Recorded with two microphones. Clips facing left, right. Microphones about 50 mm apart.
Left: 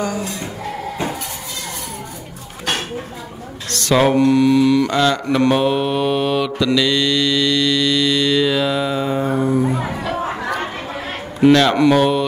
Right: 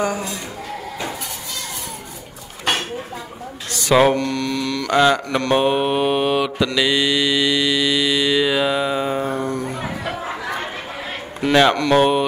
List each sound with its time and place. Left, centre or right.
3.7 s mantra: centre
4.1 s mantra: centre
4.9 s mantra: centre
9.2 s music: centre
10.1 s chatter: left
11.4 s mantra: centre
11.9 s mantra: centre